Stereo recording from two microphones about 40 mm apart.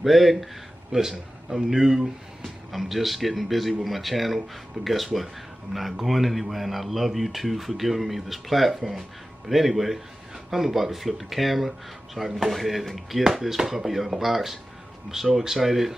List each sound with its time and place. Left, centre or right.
0.0 s speech: centre
0.9 s a man's voice: centre
1.5 s speech: centre